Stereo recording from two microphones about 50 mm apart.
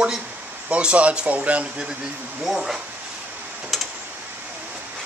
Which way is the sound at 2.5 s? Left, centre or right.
Centre.